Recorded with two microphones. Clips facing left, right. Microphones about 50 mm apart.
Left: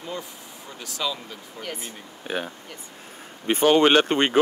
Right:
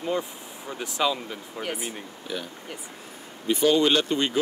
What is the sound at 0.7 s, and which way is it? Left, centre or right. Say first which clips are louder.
Speech: right 4 dB; right.